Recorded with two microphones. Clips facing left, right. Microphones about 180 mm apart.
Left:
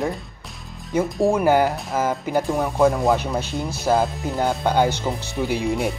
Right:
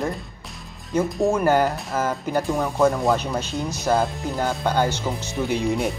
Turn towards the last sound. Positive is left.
turn(degrees=5)  # may be behind; listen again after turning